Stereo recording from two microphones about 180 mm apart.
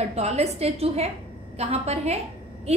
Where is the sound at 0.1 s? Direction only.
35° right (ahead or behind).